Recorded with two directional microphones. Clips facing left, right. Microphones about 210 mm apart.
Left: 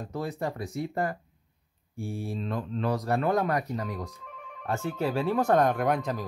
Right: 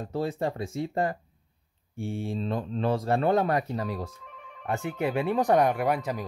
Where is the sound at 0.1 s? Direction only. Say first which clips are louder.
Right 4 dB; 30° right (ahead or behind).